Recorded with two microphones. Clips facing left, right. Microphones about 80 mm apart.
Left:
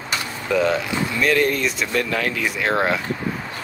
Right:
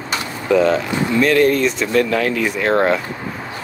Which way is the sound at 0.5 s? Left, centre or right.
Centre.